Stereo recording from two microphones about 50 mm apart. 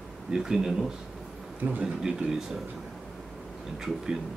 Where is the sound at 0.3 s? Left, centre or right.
Centre.